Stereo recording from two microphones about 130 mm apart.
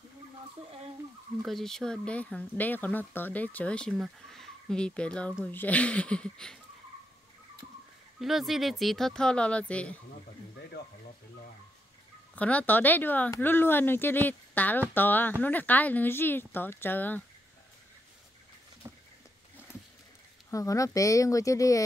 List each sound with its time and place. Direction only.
1.4 s speech: centre (ahead or behind)
8.2 s speech: centre (ahead or behind)
12.4 s speech: 10° left (ahead or behind)
18.8 s a sound: 20° right (ahead or behind)
20.5 s speech: 25° left (ahead or behind)